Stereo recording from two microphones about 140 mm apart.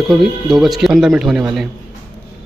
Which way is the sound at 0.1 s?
Centre (ahead or behind).